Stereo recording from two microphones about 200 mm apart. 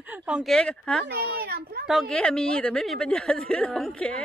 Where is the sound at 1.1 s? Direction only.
50° right (ahead or behind).